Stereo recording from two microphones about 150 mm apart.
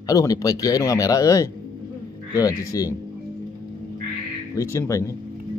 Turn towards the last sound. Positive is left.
turn(degrees=20)  # may be behind; listen again after turning